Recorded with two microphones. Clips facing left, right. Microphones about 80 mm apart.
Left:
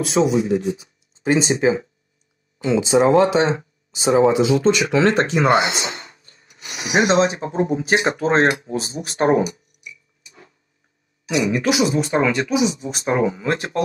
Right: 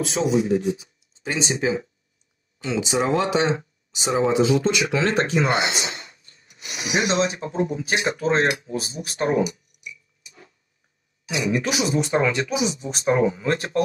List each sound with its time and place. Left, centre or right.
0.2 s speech: left
0.5 s speech: left
11.2 s speech: left